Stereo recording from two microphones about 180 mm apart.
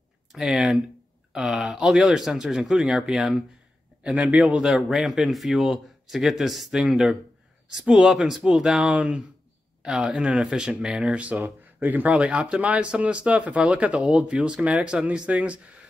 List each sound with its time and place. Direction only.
0.3 s speech: 5° right (ahead or behind)